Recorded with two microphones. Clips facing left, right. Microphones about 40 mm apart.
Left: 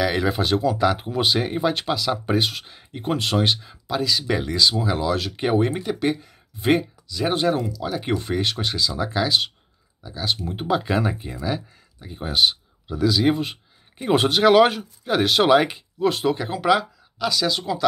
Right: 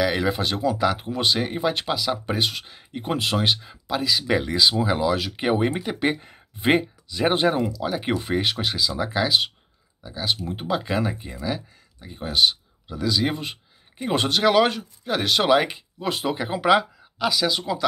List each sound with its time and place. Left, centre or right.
0.0 s speech: centre